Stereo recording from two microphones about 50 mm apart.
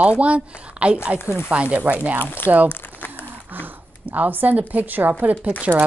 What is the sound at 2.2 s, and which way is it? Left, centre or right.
Speech, left.